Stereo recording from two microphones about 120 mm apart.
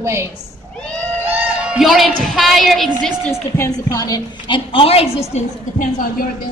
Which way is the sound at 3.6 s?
30° left (ahead or behind).